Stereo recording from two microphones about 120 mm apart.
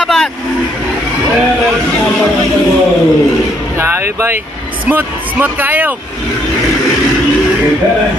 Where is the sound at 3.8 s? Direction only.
20° right (ahead or behind).